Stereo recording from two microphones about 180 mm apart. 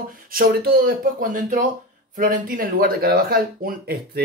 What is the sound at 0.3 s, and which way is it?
Speech, 55° right (ahead or behind).